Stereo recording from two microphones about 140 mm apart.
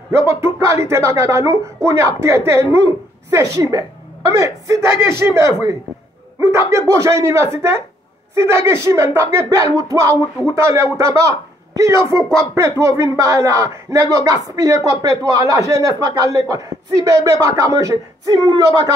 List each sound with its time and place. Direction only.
0.1 s a woman's voice: 20° right (ahead or behind)